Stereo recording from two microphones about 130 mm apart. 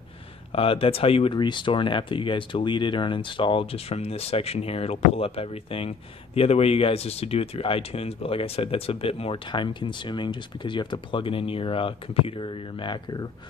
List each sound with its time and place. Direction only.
0.5 s speech: 45° left (ahead or behind)